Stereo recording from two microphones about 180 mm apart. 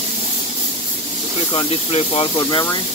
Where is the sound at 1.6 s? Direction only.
30° left (ahead or behind).